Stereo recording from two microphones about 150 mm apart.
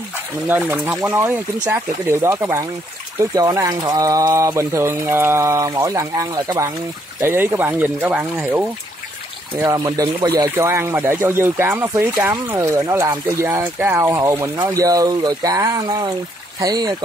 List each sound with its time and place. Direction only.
0.5 s speech: 15° right (ahead or behind)
9.8 s speech: 25° right (ahead or behind)
10.4 s speech: 15° right (ahead or behind)